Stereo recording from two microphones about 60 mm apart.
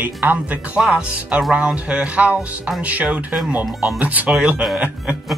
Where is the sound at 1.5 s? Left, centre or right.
Centre.